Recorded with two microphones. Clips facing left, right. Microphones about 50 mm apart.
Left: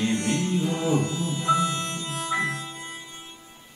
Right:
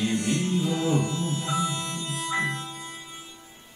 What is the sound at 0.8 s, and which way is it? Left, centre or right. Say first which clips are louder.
Music: left 1 dB; left.